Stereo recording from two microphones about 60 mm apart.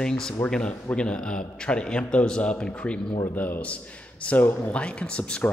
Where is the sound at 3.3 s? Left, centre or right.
Left.